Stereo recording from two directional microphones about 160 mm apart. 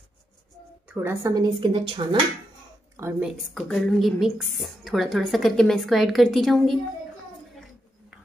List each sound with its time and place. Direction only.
0.8 s speech: 15° right (ahead or behind); by 2.0 s 30° right (ahead or behind)
3.0 s a woman's voice: 15° right (ahead or behind)
3.3 s a woman's voice: centre (ahead or behind)